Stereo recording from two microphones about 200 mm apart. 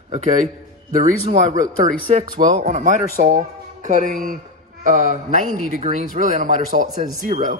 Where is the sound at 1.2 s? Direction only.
30° right (ahead or behind).